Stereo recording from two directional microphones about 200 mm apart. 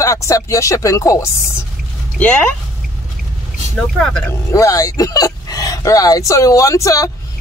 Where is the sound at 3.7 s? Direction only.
5° left (ahead or behind).